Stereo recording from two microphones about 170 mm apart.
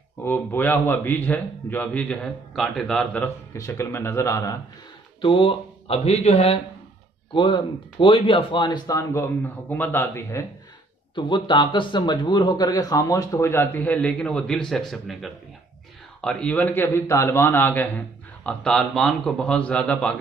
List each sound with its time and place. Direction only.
0.2 s a man's voice: 15° left (ahead or behind)
5.2 s a man's voice: 30° left (ahead or behind); by 10.4 s 15° left (ahead or behind)
11.1 s a man's voice: 25° left (ahead or behind); by 20.2 s 5° left (ahead or behind)